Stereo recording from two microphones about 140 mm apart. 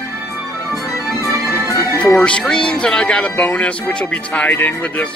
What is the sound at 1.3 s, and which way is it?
Music, 20° right (ahead or behind).